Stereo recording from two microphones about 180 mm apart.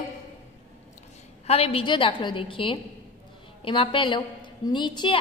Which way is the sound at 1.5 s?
35° left (ahead or behind).